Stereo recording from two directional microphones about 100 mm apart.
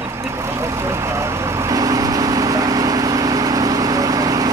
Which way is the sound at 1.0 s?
30° right (ahead or behind).